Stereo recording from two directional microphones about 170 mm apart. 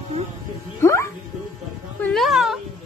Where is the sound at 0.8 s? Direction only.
15° left (ahead or behind).